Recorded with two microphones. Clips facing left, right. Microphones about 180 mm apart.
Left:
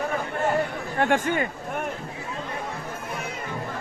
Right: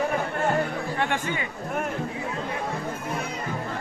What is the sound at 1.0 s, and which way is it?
Speech, 45° left (ahead or behind).